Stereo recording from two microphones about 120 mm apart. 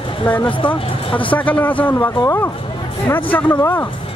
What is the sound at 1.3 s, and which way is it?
Speech, 15° left (ahead or behind).